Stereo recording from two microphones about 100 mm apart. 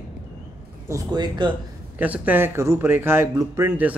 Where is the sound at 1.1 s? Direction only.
45° right (ahead or behind).